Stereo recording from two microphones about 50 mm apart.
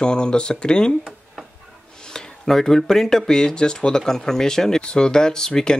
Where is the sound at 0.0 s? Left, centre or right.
Centre.